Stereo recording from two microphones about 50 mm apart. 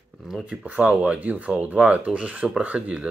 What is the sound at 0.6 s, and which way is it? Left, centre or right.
Speech, right.